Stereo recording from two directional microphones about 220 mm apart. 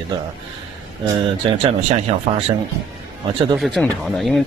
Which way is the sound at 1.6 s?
25° right (ahead or behind).